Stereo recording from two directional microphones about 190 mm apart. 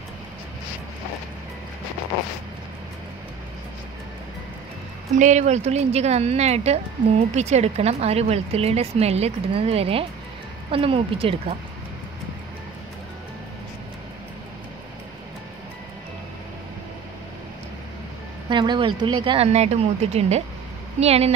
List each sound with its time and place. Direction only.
5.1 s speech: 40° right (ahead or behind)
18.5 s a woman's voice: 25° right (ahead or behind)